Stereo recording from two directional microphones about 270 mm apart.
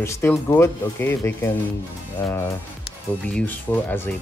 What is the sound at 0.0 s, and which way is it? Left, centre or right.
Speech, centre.